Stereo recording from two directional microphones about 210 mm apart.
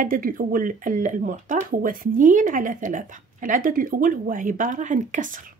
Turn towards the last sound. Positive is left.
turn(degrees=-40)  # may be behind; listen again after turning